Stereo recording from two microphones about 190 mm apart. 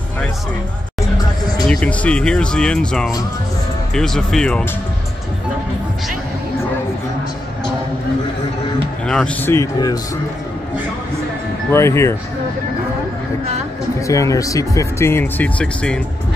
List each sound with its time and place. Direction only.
1.7 s speech: 5° left (ahead or behind)
9.0 s speech: 5° left (ahead or behind)
11.7 s speech: 15° left (ahead or behind)
14.0 s speech: 15° left (ahead or behind)